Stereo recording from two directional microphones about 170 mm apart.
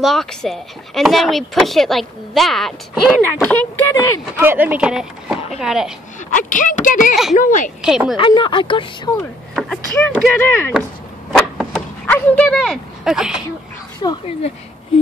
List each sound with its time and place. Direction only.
0.0 s speech: centre (ahead or behind)
3.5 s speech: 15° left (ahead or behind)
4.4 s speech: 10° right (ahead or behind)
6.3 s speech: 50° left (ahead or behind)
7.8 s speech: 5° right (ahead or behind)
8.2 s speech: 30° left (ahead or behind)
9.6 s speech: centre (ahead or behind)
10.3 s speech: 15° left (ahead or behind)
11.3 s a sound: 5° left (ahead or behind)
14.0 s speech: 25° left (ahead or behind)